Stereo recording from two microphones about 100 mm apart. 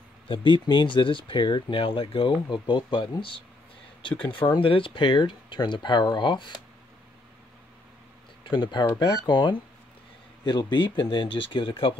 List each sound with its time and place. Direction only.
0.3 s speech: 55° left (ahead or behind)
8.5 s speech: 50° left (ahead or behind)